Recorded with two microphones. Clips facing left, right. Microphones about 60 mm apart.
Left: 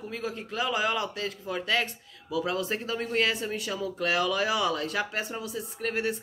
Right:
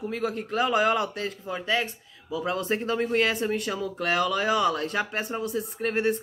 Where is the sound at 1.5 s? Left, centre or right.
Centre.